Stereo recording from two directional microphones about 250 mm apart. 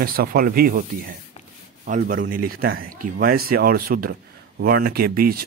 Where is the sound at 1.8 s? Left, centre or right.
Right.